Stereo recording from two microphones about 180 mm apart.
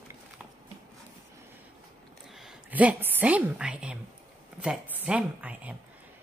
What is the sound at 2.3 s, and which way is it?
A woman's voice, 5° right (ahead or behind).